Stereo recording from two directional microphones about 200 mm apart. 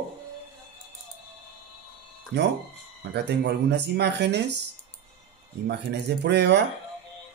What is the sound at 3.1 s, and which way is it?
Speech, 55° right (ahead or behind).